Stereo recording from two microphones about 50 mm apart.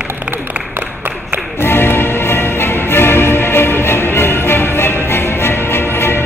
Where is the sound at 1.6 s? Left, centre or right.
Left.